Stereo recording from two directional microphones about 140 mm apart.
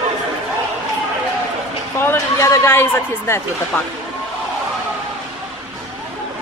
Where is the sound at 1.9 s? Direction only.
15° left (ahead or behind).